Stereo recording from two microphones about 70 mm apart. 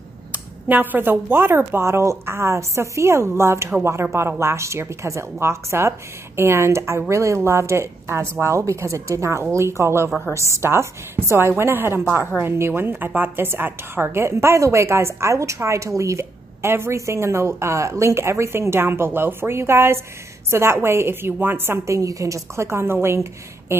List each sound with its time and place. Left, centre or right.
0.3 s a woman's voice: right
21.9 s a woman's voice: right